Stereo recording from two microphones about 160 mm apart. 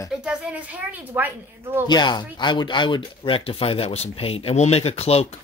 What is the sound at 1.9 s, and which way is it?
Speech, 25° left (ahead or behind).